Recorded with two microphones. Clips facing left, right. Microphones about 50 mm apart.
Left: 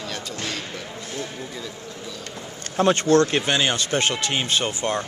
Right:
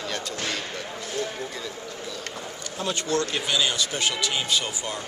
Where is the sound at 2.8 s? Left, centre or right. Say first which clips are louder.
Left 9 dB; left.